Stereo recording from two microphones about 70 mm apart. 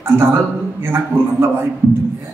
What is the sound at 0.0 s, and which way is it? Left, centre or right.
A man's voice, right.